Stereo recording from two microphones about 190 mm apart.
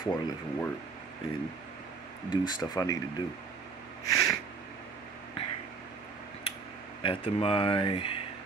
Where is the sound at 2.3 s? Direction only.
20° left (ahead or behind).